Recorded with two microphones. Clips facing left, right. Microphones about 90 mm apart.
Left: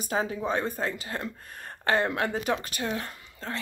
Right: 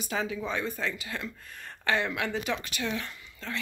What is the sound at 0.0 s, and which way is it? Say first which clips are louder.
A woman's voice: left 3 dB; 40° left (ahead or behind).